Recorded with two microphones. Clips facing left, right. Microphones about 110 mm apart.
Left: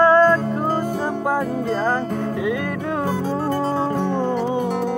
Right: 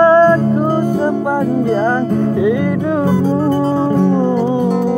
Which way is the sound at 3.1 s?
Centre (ahead or behind).